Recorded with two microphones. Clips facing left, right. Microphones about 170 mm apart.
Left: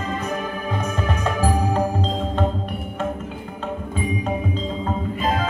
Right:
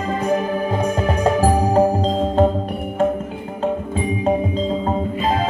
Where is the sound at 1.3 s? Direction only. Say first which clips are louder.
Right 5 dB; 40° right (ahead or behind).